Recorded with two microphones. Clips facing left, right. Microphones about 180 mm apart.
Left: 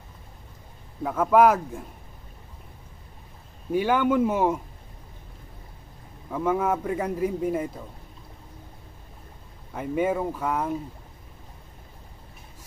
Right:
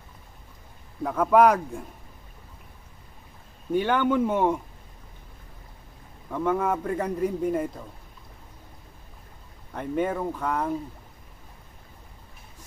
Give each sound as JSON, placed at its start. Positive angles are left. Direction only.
{"t": 1.0, "sound": "a man's voice", "side_deg": 0}
{"t": 3.7, "sound": "a man's voice", "side_deg": 5}
{"t": 6.3, "sound": "a man's voice", "side_deg": 5}
{"t": 9.7, "sound": "speech", "side_deg": 5}